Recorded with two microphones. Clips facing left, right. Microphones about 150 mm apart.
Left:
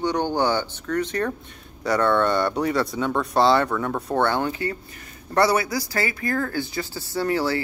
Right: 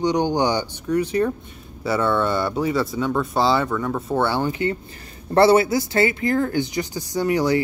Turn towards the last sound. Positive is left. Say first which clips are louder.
# right 3 dB
turn(degrees=-15)  # may be behind; listen again after turning